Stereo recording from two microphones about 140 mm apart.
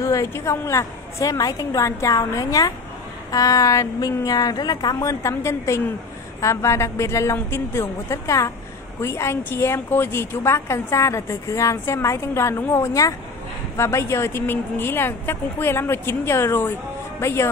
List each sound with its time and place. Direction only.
0.0 s a woman's voice: 20° left (ahead or behind)